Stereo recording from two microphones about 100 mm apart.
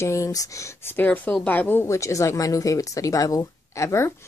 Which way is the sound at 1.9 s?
30° left (ahead or behind).